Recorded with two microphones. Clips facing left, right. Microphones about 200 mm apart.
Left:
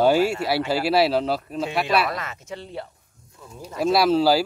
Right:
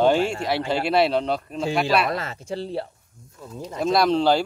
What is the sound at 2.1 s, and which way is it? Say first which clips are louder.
Speech: right 4 dB; 30° right (ahead or behind).